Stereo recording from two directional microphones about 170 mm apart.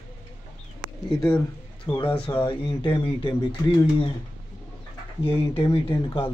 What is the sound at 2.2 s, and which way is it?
Speech, 30° left (ahead or behind).